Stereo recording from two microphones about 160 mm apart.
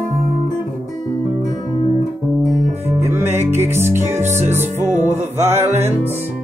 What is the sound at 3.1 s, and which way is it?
Music, 15° right (ahead or behind).